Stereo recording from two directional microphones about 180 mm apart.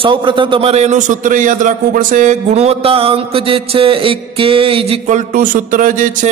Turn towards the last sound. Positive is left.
turn(degrees=-45)  # may be behind; listen again after turning